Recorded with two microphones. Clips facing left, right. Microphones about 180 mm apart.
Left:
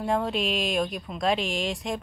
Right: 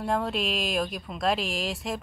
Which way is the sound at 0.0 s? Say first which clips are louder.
Left 2 dB; centre (ahead or behind).